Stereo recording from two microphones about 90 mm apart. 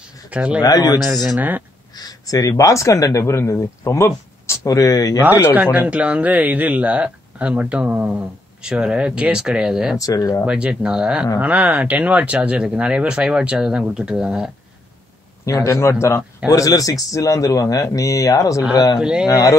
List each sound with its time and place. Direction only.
0.3 s speech: 15° right (ahead or behind)
0.6 s speech: 45° left (ahead or behind)
1.0 s speech: centre (ahead or behind)
2.0 s a man's voice: 45° left (ahead or behind)
5.5 s speech: 15° right (ahead or behind)
9.9 s a man's voice: 40° left (ahead or behind)
10.4 s speech: 10° right (ahead or behind)
15.4 s a man's voice: 35° left (ahead or behind)
16.5 s a man's voice: 40° left (ahead or behind)
18.9 s speech: 10° right (ahead or behind)
19.2 s a man's voice: 40° left (ahead or behind)